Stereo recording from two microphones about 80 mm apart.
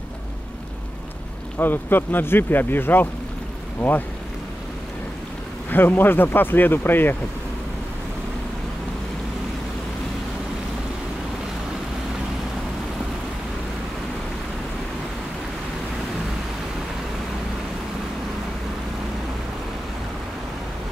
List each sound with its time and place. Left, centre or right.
1.6 s speech: left
5.7 s speech: left